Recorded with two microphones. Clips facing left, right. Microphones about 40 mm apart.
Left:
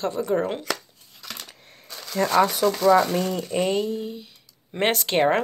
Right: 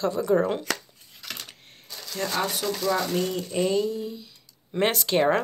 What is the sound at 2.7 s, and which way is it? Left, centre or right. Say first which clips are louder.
Speech: left 6 dB; left.